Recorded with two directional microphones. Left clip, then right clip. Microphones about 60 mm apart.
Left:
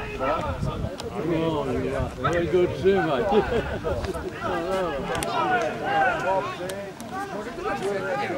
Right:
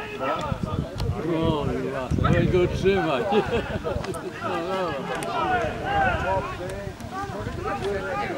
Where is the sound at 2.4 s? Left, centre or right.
Right.